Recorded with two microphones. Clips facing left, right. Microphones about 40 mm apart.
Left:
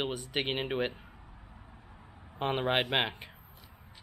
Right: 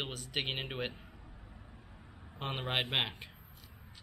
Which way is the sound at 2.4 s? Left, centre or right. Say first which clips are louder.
Left 6 dB; centre.